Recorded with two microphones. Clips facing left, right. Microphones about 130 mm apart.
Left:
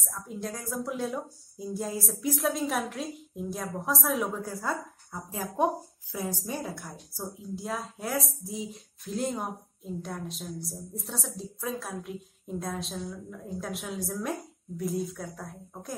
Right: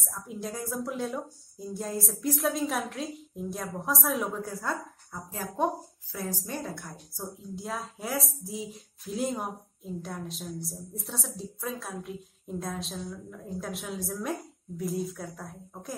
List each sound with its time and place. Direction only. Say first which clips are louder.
0.0 s a woman's voice: left 1 dB; centre (ahead or behind)
5.3 s a woman's voice: left 2 dB; 15° left (ahead or behind); by 16.0 s centre (ahead or behind)